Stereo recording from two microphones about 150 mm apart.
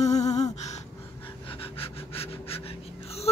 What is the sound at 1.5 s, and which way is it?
Speech, 40° left (ahead or behind).